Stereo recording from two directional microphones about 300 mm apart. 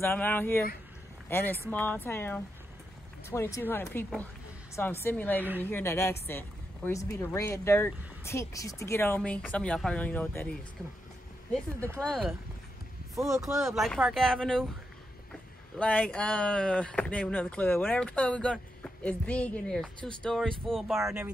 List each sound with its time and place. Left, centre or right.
0.0 s speech: centre
12.0 s speech: centre
15.8 s speech: centre
20.0 s speech: centre
20.2 s speech: centre